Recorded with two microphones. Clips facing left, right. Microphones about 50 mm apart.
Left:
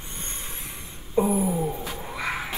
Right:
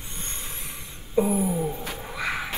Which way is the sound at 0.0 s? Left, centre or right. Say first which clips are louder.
Even; left.